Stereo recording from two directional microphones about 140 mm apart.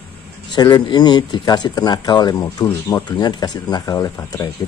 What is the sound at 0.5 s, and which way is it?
Speech, 30° left (ahead or behind).